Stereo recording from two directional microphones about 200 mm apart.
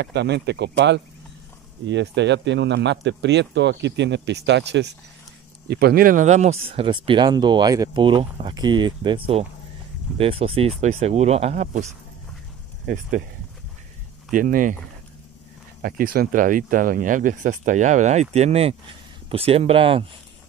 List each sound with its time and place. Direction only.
0.0 s speech: 60° right (ahead or behind)
5.7 s speech: 50° right (ahead or behind)
14.3 s speech: 45° right (ahead or behind)
15.8 s speech: 45° right (ahead or behind); by 20.1 s 30° right (ahead or behind)